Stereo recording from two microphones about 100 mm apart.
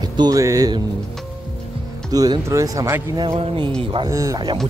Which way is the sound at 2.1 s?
35° right (ahead or behind).